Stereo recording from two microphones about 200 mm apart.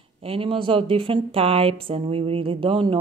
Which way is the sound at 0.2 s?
30° right (ahead or behind).